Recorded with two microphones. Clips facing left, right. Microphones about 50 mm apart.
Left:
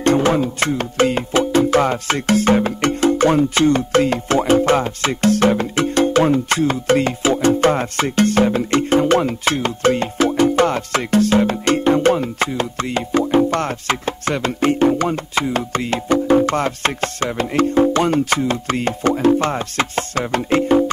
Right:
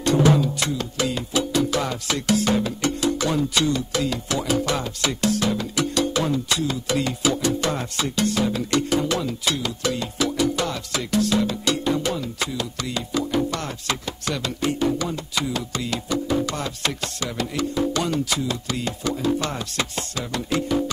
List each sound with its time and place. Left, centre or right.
0.0 s music: left